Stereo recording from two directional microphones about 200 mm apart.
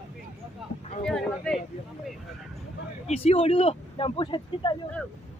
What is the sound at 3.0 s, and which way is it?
Speech, 30° left (ahead or behind).